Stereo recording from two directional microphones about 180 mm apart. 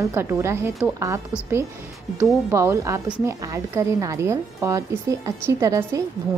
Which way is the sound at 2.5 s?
15° right (ahead or behind).